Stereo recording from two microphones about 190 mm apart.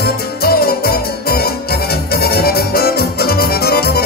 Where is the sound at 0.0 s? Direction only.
55° left (ahead or behind).